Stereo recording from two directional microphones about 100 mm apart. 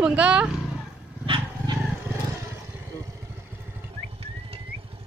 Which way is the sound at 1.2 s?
55° right (ahead or behind).